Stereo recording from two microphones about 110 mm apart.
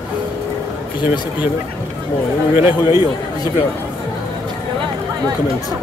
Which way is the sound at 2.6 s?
20° right (ahead or behind).